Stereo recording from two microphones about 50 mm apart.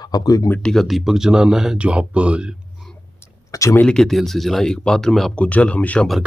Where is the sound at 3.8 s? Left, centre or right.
Centre.